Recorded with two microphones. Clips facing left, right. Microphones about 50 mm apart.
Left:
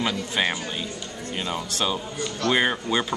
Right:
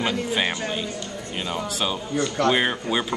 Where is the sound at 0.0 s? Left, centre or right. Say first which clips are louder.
Right 1 dB; centre.